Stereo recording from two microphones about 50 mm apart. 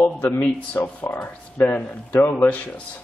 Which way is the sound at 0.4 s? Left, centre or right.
Left.